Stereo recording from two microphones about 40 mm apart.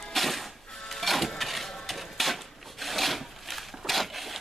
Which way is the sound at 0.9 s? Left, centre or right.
Centre.